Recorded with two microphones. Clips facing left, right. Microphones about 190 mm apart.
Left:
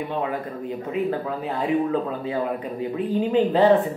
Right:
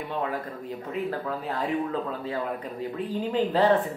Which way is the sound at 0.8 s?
10° left (ahead or behind).